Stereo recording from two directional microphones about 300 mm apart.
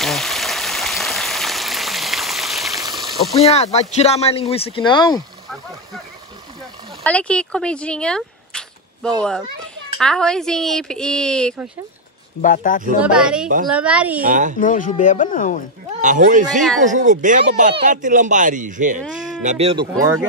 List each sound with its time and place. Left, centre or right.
0.0 s a sound: centre
3.3 s speech: left
7.0 s speech: centre
12.4 s speech: left
13.0 s speech: centre
14.2 s speech: right
14.6 s speech: left
16.0 s speech: right